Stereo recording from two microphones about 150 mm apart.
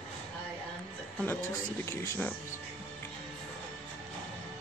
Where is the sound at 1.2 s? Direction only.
15° left (ahead or behind).